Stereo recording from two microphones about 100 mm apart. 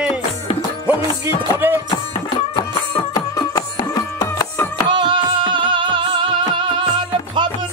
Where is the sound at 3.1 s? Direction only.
40° left (ahead or behind).